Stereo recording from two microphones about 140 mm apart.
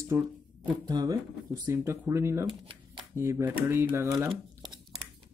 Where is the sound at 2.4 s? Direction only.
35° right (ahead or behind).